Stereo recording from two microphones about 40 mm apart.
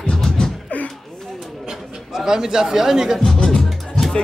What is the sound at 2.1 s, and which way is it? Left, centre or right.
A man's voice, centre.